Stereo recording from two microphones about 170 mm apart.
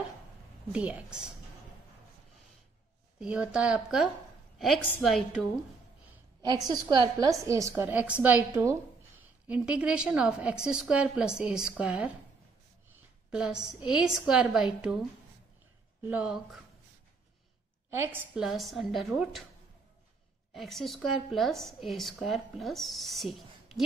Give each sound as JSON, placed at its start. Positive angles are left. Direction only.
{"t": 0.7, "sound": "a woman's voice", "side_deg": -5}
{"t": 3.2, "sound": "a woman's voice", "side_deg": -5}
{"t": 6.4, "sound": "a woman's voice", "side_deg": -25}
{"t": 13.3, "sound": "a woman's voice", "side_deg": -5}
{"t": 16.1, "sound": "a woman's voice", "side_deg": -5}
{"t": 17.8, "sound": "a woman's voice", "side_deg": -15}
{"t": 20.5, "sound": "a woman's voice", "side_deg": 0}